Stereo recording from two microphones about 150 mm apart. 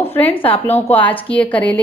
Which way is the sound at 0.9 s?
10° left (ahead or behind).